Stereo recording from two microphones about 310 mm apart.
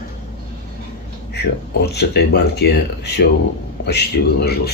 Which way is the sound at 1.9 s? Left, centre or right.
Left.